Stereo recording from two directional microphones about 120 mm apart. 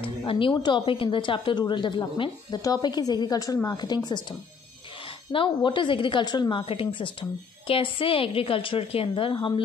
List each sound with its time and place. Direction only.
0.0 s a woman's voice: 45° left (ahead or behind)